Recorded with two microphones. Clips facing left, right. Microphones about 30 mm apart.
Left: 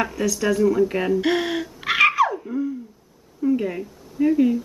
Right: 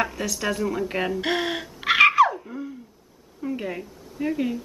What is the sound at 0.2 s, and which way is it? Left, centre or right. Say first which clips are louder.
Speech: left 6 dB; centre.